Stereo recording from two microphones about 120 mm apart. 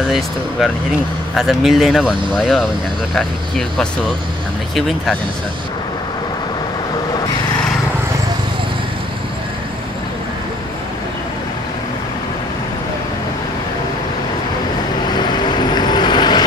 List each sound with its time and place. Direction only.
1.3 s speech: centre (ahead or behind)
15.3 s vehicle: 35° left (ahead or behind)